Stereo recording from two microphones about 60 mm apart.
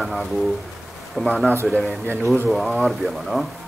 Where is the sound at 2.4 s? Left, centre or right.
Centre.